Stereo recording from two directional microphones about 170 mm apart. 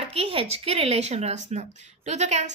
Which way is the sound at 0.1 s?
35° right (ahead or behind).